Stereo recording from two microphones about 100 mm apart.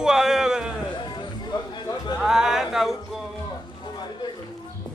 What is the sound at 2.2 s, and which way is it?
Speech, 5° right (ahead or behind).